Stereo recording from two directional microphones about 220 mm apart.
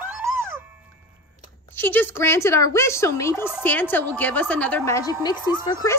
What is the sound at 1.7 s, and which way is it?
A woman's voice, 10° left (ahead or behind).